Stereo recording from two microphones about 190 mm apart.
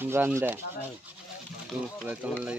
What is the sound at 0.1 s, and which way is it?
Speech, 15° right (ahead or behind).